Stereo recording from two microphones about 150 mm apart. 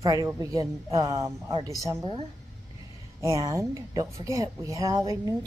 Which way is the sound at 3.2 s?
20° right (ahead or behind).